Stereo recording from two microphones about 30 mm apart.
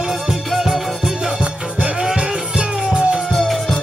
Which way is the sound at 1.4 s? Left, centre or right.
Right.